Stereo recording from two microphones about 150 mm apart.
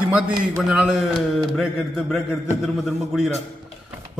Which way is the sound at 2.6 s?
Centre (ahead or behind).